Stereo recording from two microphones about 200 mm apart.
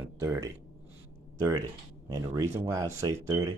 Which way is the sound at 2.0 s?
15° right (ahead or behind).